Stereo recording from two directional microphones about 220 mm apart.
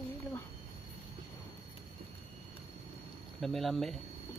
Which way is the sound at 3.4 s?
Centre (ahead or behind).